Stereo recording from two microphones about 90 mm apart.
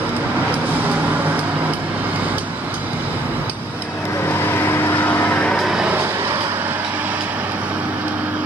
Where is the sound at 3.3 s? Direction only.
15° right (ahead or behind).